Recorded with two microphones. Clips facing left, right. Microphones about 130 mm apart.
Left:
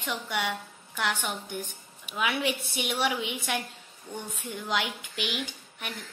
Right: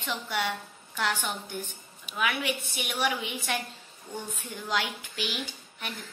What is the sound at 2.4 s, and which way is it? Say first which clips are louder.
Speech: left 2 dB; 25° left (ahead or behind).